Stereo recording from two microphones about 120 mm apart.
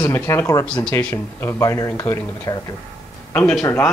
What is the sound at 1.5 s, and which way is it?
A man's voice, 25° left (ahead or behind).